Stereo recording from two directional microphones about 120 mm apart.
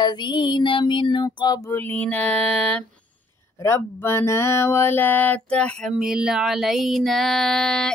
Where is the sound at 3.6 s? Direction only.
20° left (ahead or behind).